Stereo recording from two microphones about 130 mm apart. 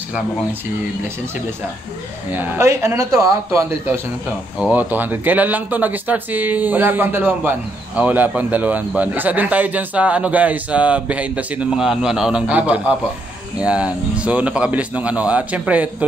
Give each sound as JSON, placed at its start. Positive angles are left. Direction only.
{"t": 2.3, "sound": "speech", "side_deg": -15}
{"t": 4.6, "sound": "speech", "side_deg": -10}